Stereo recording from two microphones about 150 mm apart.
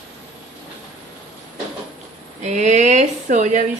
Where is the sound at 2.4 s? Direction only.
50° right (ahead or behind).